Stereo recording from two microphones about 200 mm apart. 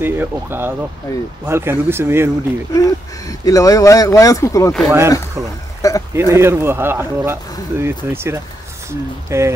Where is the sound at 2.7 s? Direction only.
15° left (ahead or behind).